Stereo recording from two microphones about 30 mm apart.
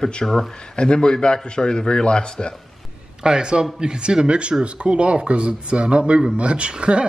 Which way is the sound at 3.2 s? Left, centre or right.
Right.